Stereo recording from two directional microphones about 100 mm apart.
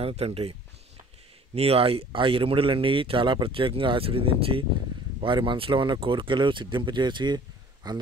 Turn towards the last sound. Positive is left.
turn(degrees=-45)  # may be behind; listen again after turning